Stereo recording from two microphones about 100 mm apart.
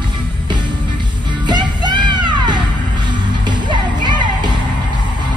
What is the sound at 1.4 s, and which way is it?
Music, 45° right (ahead or behind).